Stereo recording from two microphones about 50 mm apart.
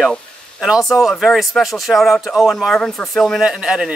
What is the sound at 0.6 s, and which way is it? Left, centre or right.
Speech, centre.